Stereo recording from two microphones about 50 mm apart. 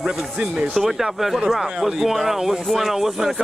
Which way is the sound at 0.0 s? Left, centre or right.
Centre.